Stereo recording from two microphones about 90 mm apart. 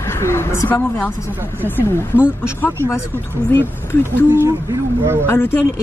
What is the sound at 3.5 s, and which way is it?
Speech, 25° left (ahead or behind).